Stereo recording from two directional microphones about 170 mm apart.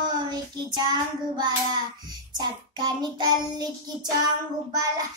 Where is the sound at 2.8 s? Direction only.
25° right (ahead or behind).